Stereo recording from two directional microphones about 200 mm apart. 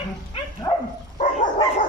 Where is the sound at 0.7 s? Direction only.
15° left (ahead or behind).